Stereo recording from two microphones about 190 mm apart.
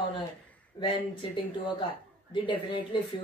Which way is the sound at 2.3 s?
25° left (ahead or behind).